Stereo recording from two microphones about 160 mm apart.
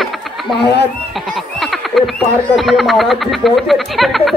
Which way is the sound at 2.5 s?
Centre (ahead or behind).